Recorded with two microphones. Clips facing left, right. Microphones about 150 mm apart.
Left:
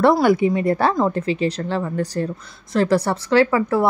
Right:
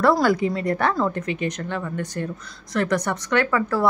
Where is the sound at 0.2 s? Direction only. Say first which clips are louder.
Left 4 dB; 25° left (ahead or behind).